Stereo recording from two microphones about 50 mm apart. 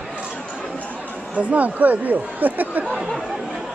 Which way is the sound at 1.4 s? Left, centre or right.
Right.